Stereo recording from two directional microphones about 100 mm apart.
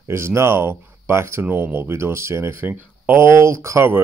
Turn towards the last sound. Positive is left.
turn(degrees=-25)  # may be behind; listen again after turning